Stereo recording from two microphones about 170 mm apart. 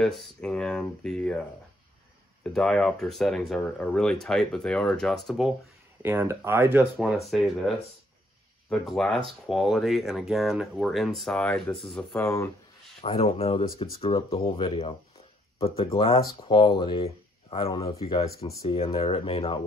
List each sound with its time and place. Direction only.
0.0 s speech: centre (ahead or behind)
2.4 s speech: 5° left (ahead or behind)
6.0 s speech: 15° right (ahead or behind)
7.0 s speech: centre (ahead or behind)
12.2 s speech: 15° left (ahead or behind)
13.0 s speech: 35° left (ahead or behind)